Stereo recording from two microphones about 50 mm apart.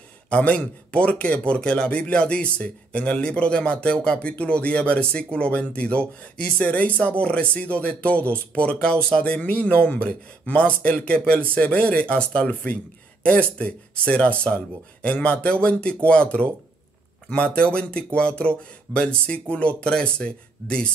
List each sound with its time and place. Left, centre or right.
0.3 s speech: left